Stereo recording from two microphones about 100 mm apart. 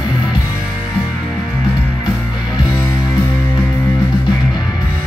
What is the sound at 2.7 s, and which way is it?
Music, 25° left (ahead or behind).